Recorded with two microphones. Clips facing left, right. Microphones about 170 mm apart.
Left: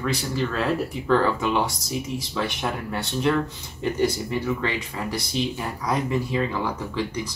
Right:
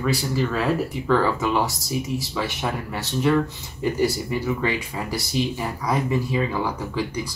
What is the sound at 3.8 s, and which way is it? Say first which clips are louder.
Speech: right 1 dB; 5° right (ahead or behind).